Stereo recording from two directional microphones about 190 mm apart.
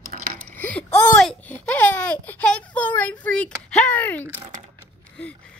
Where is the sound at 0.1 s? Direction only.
55° right (ahead or behind).